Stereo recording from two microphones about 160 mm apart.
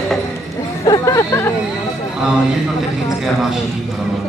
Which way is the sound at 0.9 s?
20° left (ahead or behind).